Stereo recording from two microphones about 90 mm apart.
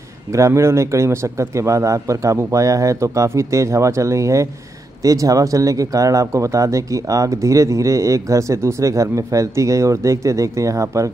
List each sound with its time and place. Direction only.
0.3 s speech: 35° right (ahead or behind)